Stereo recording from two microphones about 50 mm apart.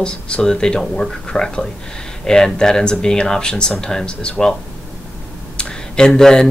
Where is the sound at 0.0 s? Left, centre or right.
Centre.